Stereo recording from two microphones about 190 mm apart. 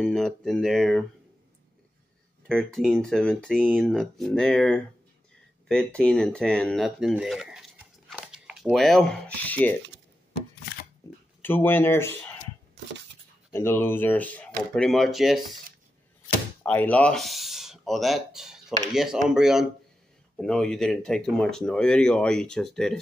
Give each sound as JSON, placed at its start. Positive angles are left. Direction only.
{"t": 0.0, "sound": "speech", "side_deg": 0}
{"t": 2.4, "sound": "speech", "side_deg": 5}
{"t": 11.0, "sound": "a sound", "side_deg": 15}
{"t": 11.4, "sound": "speech", "side_deg": 10}
{"t": 13.5, "sound": "speech", "side_deg": 10}
{"t": 16.6, "sound": "speech", "side_deg": 10}